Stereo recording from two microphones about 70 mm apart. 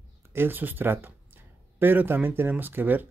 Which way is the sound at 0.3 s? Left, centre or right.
Right.